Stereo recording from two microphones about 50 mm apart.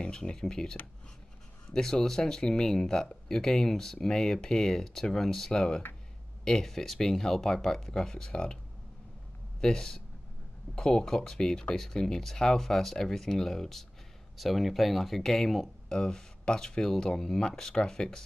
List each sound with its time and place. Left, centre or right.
0.0 s speech: centre
9.6 s speech: centre